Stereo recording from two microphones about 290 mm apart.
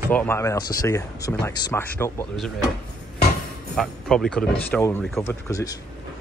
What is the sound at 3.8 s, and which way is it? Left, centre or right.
Speech, centre.